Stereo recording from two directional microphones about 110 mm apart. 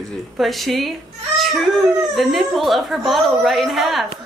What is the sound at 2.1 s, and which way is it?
Speech, centre (ahead or behind).